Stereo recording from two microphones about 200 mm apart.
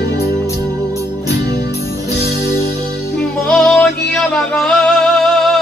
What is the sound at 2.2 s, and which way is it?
Music, 55° left (ahead or behind).